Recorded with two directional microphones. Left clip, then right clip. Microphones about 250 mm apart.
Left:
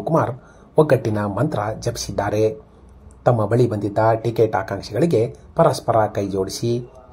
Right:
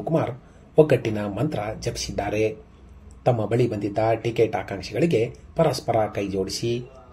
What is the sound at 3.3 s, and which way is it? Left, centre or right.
Speech, left.